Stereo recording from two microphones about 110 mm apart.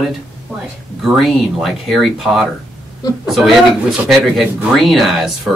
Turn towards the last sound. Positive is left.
turn(degrees=0)  # may be behind; listen again after turning